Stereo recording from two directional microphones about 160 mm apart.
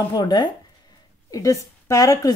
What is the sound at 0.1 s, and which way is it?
A woman's voice, 25° left (ahead or behind).